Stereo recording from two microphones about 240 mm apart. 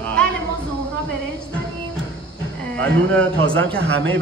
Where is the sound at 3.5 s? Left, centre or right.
Right.